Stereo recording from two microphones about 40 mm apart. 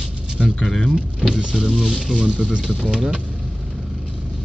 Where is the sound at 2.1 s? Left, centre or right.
Right.